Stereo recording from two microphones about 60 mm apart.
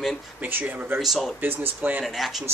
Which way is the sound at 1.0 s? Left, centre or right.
Centre.